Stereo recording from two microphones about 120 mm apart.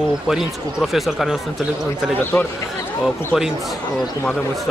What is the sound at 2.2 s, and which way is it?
Speech, 20° left (ahead or behind).